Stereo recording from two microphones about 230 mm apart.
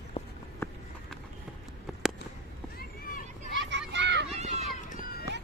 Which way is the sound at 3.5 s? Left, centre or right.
Right.